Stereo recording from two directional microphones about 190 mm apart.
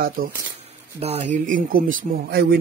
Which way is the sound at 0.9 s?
30° right (ahead or behind).